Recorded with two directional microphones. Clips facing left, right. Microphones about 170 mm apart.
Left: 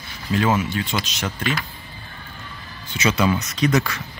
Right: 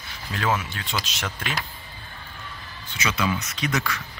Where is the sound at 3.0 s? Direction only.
35° left (ahead or behind).